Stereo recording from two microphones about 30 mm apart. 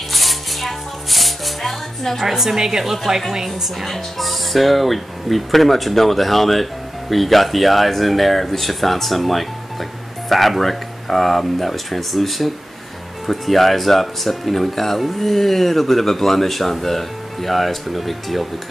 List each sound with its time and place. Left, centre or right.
0.1 s music: centre
2.2 s a woman's voice: centre
3.8 s speech: centre